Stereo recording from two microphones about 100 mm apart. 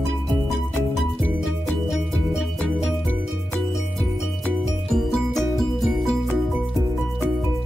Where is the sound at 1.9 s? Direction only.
Centre (ahead or behind).